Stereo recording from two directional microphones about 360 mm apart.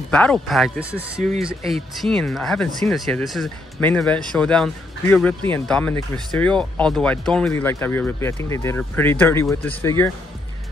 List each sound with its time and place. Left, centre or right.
0.1 s speech: centre